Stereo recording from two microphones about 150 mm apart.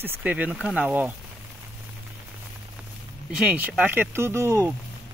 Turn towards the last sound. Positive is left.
turn(degrees=-20)  # may be behind; listen again after turning